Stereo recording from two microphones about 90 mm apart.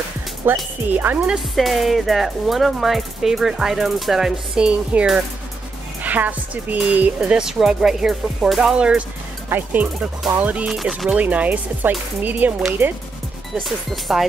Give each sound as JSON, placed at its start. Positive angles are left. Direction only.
{"t": 0.4, "sound": "speech", "side_deg": -25}
{"t": 1.2, "sound": "speech", "side_deg": -5}
{"t": 7.2, "sound": "speech", "side_deg": -5}
{"t": 10.7, "sound": "speech", "side_deg": 0}
{"t": 11.1, "sound": "speech", "side_deg": -15}
{"t": 13.7, "sound": "speech", "side_deg": 0}